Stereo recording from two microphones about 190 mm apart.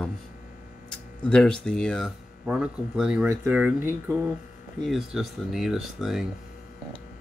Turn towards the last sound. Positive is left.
turn(degrees=0)  # may be behind; listen again after turning